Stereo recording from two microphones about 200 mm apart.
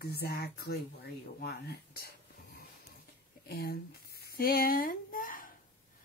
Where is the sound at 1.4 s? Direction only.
50° left (ahead or behind).